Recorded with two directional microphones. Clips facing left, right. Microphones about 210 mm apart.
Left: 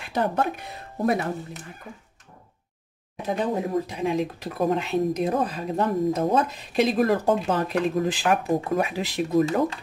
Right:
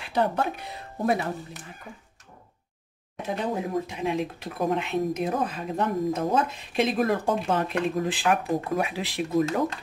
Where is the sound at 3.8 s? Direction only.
40° left (ahead or behind).